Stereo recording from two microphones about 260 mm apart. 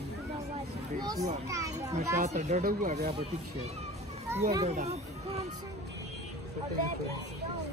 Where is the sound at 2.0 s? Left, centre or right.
Right.